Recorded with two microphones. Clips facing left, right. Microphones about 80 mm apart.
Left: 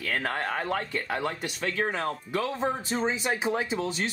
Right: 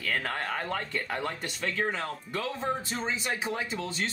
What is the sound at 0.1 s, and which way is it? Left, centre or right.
Speech, centre.